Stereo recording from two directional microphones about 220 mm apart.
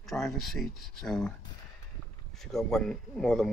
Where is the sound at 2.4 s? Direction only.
Centre (ahead or behind).